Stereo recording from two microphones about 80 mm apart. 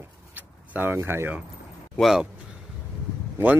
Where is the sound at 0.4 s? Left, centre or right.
Right.